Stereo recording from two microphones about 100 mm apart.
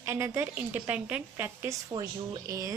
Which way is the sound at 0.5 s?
15° right (ahead or behind).